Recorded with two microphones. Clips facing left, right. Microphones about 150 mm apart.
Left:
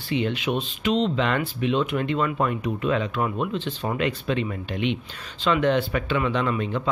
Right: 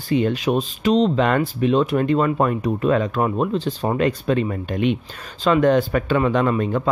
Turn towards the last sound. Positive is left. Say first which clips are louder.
# right 5 dB
turn(degrees=-45)  # may be behind; listen again after turning